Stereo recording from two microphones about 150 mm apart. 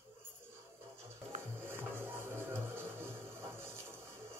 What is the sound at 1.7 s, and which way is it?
Music, 15° right (ahead or behind).